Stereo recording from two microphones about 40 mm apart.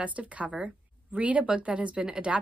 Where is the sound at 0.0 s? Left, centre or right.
Right.